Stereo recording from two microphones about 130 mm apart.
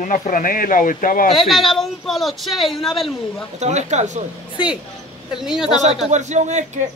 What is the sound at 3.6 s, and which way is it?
Speech, 60° right (ahead or behind).